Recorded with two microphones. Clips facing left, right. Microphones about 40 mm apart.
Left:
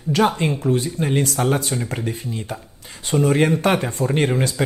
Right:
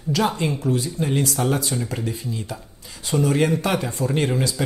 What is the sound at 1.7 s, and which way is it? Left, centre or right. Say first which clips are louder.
Speech: left 1 dB; left.